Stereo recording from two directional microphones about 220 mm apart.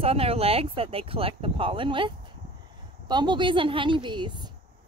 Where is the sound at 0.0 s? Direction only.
25° right (ahead or behind).